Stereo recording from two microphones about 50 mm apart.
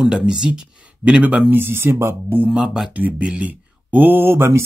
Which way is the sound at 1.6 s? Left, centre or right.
Right.